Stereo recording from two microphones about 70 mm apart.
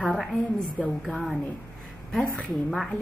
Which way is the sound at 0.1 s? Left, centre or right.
Centre.